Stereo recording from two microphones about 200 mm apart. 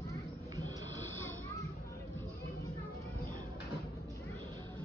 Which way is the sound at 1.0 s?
10° left (ahead or behind).